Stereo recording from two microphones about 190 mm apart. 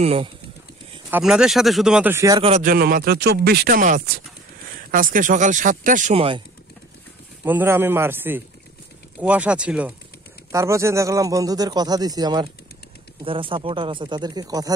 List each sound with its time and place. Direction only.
0.0 s speech: 30° right (ahead or behind)
1.1 s speech: 5° right (ahead or behind)
2.4 s speech: 40° right (ahead or behind)
6.1 s speech: 25° right (ahead or behind)
7.4 s a man's voice: 10° right (ahead or behind)